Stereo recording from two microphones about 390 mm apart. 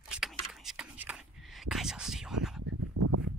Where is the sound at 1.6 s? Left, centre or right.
Centre.